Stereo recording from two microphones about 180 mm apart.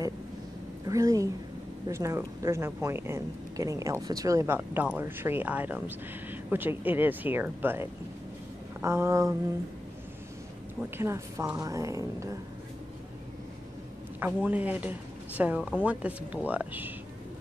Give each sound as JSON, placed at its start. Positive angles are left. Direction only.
{"t": 0.8, "sound": "a sound", "side_deg": -20}
{"t": 1.9, "sound": "speech", "side_deg": -15}
{"t": 10.8, "sound": "speech", "side_deg": -15}
{"t": 14.2, "sound": "speech", "side_deg": -10}